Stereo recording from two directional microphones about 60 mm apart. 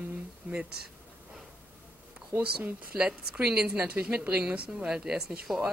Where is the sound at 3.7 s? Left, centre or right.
Right.